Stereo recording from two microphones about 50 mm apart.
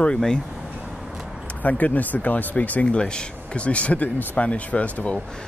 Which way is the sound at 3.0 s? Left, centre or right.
Centre.